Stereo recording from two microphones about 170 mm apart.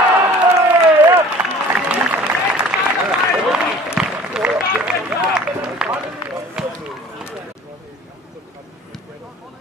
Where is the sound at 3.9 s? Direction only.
5° right (ahead or behind).